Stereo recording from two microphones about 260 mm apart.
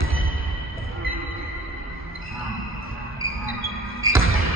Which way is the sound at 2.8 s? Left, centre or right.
Right.